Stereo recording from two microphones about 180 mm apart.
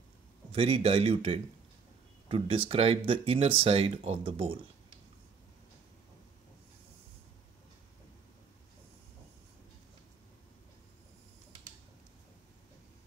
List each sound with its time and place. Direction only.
0.5 s speech: 30° right (ahead or behind)